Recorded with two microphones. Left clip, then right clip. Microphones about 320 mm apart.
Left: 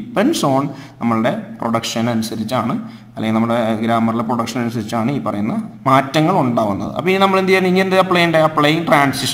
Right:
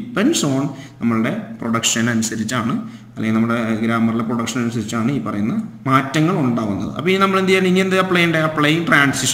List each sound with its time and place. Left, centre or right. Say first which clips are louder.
0.1 s a man's voice: left 3 dB; centre